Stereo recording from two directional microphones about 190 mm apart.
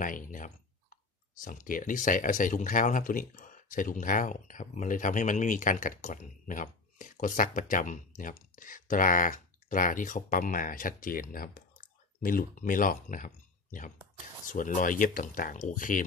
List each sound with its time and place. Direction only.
0.0 s speech: 45° left (ahead or behind)